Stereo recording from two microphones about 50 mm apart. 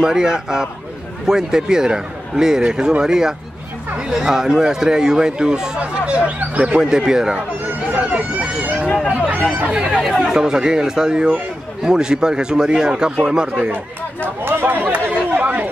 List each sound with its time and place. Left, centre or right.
0.0 s speech: centre
8.1 s speech: right
10.0 s speech: centre
14.2 s speech: right
15.3 s chatter: right